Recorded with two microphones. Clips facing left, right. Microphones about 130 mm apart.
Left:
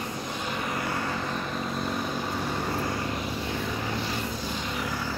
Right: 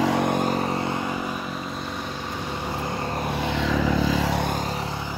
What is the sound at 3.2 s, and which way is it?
Vehicle, 70° right (ahead or behind).